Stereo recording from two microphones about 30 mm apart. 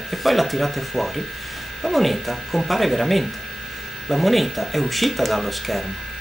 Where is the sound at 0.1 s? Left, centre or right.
Centre.